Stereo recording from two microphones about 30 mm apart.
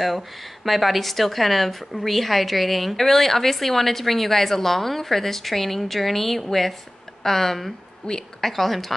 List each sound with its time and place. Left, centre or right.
0.7 s a woman's voice: centre
8.0 s a woman's voice: left
8.4 s a woman's voice: centre